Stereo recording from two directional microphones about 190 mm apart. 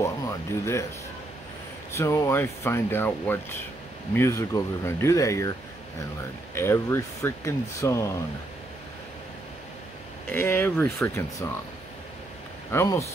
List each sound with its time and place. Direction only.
0.0 s speech: 15° left (ahead or behind)
2.0 s speech: 15° left (ahead or behind)
6.5 s speech: 15° left (ahead or behind)
10.3 s speech: 10° left (ahead or behind)
12.7 s speech: 15° left (ahead or behind)